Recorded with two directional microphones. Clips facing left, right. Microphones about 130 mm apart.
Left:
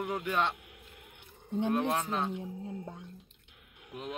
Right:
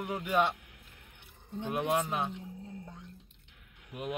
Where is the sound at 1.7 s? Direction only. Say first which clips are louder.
Right 1 dB; 10° right (ahead or behind).